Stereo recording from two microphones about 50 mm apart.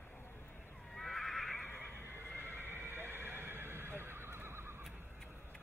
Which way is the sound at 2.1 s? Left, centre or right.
Right.